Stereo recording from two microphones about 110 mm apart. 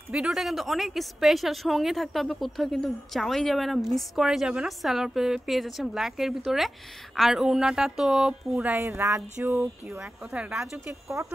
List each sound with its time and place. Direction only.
0.1 s a woman's voice: 5° right (ahead or behind)
8.7 s a sound: 25° right (ahead or behind)
9.9 s speech: 10° right (ahead or behind)